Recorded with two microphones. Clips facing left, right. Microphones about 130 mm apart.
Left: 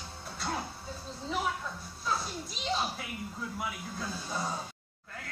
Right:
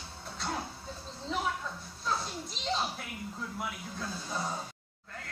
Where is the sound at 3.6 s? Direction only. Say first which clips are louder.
Left 1 dB; 5° left (ahead or behind).